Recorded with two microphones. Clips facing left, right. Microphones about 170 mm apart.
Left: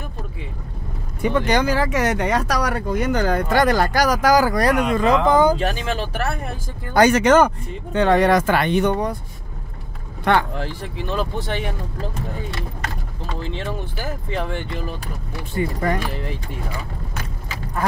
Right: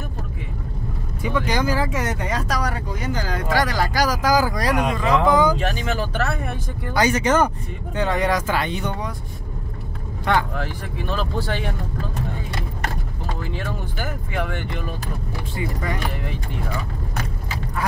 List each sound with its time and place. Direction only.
1.2 s speech: 60° left (ahead or behind)
6.9 s speech: 65° left (ahead or behind)
10.3 s speech: 65° left (ahead or behind)
11.0 s speech: 20° left (ahead or behind)
13.4 s speech: 25° left (ahead or behind)
15.5 s speech: 50° left (ahead or behind)